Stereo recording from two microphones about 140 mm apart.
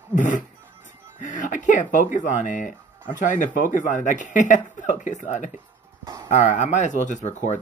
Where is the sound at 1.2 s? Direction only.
65° left (ahead or behind).